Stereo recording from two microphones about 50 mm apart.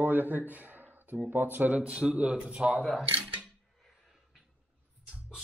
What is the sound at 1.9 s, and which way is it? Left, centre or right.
Speech, right.